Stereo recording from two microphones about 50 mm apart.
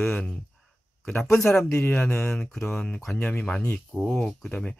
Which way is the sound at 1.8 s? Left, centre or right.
Left.